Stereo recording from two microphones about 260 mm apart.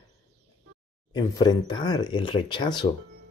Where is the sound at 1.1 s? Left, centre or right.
Centre.